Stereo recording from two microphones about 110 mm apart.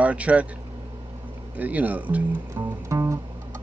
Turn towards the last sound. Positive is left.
turn(degrees=-25)  # may be behind; listen again after turning